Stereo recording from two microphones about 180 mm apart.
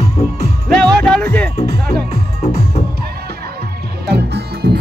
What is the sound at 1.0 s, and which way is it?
Music, 5° left (ahead or behind).